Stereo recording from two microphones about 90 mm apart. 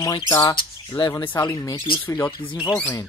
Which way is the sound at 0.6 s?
65° left (ahead or behind).